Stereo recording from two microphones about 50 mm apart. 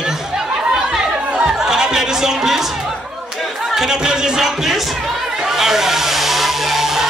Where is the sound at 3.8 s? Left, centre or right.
Centre.